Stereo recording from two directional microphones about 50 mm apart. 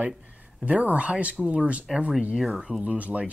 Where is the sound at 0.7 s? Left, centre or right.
Right.